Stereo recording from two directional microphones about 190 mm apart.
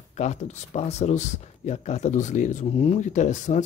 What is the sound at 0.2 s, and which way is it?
Speech, 35° left (ahead or behind).